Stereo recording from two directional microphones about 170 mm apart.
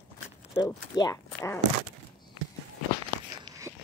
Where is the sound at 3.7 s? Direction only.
15° right (ahead or behind).